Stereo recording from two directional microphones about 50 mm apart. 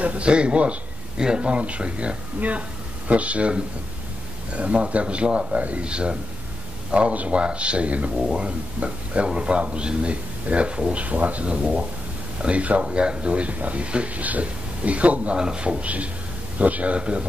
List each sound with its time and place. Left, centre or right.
0.0 s speech: right
15.3 s speech: centre